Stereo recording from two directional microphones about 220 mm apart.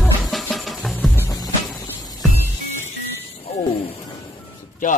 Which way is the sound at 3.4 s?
25° left (ahead or behind).